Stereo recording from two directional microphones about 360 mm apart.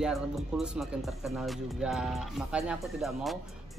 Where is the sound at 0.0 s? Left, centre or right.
Centre.